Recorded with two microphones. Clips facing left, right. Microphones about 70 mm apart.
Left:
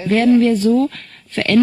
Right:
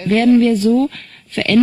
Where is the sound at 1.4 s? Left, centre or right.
Left.